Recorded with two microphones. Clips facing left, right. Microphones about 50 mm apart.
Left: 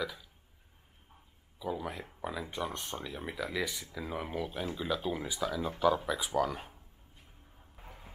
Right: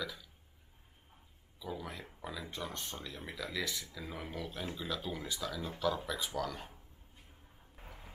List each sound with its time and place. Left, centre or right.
0.0 s burping: centre
1.6 s a sound: centre
2.2 s speech: centre
7.7 s vehicle: centre